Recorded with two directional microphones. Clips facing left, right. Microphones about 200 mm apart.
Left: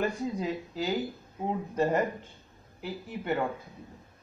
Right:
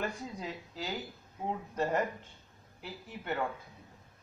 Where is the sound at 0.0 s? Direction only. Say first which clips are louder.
Left 8 dB; 5° left (ahead or behind).